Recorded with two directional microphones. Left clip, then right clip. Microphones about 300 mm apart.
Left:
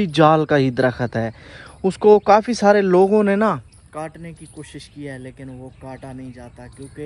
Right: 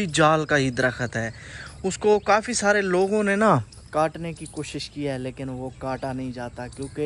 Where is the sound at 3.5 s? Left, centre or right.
Centre.